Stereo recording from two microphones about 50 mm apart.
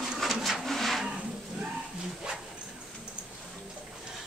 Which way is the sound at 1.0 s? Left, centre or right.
Right.